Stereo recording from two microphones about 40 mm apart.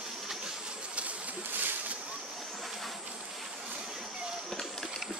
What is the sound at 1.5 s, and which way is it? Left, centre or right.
Boat, right.